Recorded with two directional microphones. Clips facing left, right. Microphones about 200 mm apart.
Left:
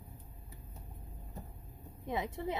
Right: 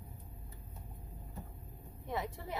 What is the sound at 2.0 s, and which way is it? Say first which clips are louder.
Speech: left 4 dB; 15° left (ahead or behind).